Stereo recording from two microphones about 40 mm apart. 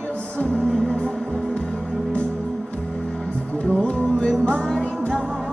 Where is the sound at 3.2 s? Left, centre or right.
Left.